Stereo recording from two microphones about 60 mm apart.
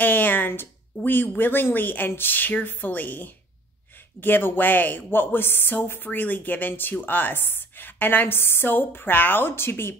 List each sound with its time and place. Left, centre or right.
0.0 s speech: left